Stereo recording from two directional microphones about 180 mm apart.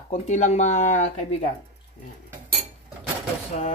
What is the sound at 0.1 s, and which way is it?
Speech, 40° left (ahead or behind).